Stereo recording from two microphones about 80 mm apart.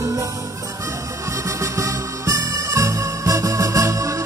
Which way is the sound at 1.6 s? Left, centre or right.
Right.